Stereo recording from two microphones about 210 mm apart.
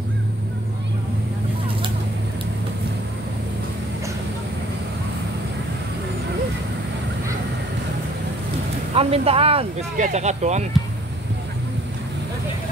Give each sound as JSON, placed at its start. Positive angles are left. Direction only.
{"t": 8.9, "sound": "speech", "side_deg": -30}